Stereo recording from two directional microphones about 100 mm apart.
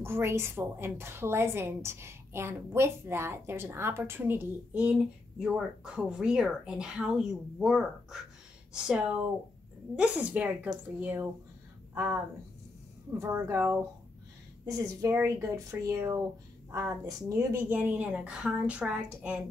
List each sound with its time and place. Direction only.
0.0 s a woman's voice: 25° right (ahead or behind)
5.4 s speech: 5° right (ahead or behind)
13.2 s a woman's voice: 30° right (ahead or behind)
14.7 s speech: 35° right (ahead or behind); by 19.0 s 10° right (ahead or behind)